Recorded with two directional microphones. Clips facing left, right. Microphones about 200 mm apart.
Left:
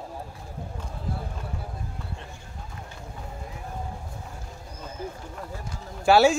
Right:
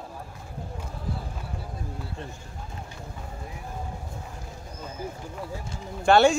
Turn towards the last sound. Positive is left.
turn(degrees=5)  # may be behind; listen again after turning